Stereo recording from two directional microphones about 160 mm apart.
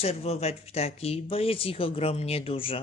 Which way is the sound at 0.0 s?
40° left (ahead or behind).